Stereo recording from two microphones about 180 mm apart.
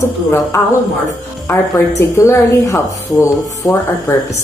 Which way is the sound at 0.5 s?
15° left (ahead or behind).